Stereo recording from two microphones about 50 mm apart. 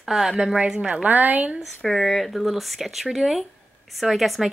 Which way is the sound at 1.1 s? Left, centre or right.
Right.